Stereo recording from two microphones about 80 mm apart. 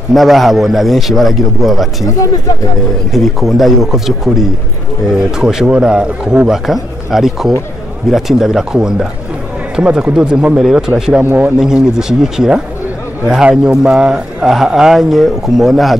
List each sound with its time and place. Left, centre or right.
0.1 s a man's voice: centre
2.0 s speech: left
3.1 s a man's voice: centre